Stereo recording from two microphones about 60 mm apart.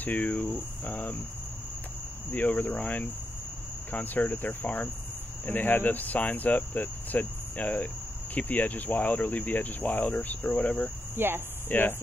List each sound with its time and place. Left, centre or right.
0.0 s cricket: left
2.3 s cricket: left
11.1 s speech: right
11.7 s cricket: left